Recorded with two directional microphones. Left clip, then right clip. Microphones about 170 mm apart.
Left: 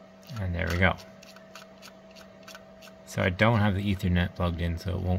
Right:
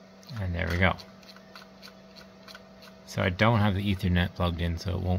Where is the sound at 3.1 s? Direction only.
Centre (ahead or behind).